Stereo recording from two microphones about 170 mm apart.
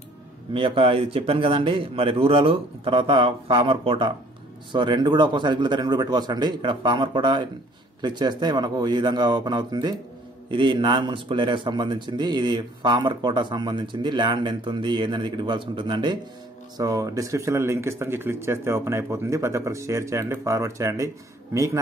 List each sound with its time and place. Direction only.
0.5 s a man's voice: 30° right (ahead or behind)